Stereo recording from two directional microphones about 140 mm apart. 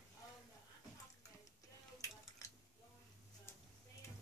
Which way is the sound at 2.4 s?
25° left (ahead or behind).